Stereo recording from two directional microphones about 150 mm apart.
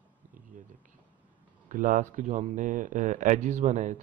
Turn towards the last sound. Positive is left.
turn(degrees=-55)  # may be behind; listen again after turning